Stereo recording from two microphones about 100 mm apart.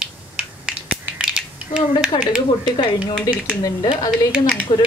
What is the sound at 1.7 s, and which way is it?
Speech, 65° left (ahead or behind).